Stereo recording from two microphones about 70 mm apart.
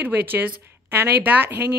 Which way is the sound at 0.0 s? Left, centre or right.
Right.